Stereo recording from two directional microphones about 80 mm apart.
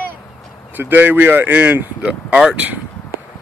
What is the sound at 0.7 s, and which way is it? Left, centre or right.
Speech, right.